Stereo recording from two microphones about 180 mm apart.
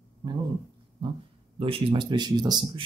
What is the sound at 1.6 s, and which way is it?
Speech, 30° right (ahead or behind).